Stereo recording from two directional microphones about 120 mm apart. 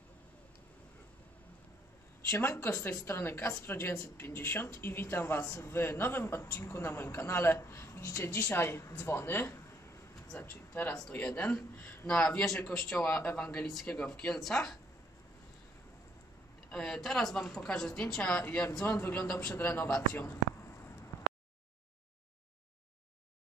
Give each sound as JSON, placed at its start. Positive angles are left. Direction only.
{"t": 2.3, "sound": "a woman's voice", "side_deg": 20}
{"t": 16.7, "sound": "a man's voice", "side_deg": 5}